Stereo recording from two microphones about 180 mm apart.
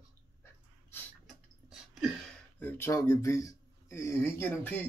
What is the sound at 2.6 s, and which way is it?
Speech, 15° left (ahead or behind).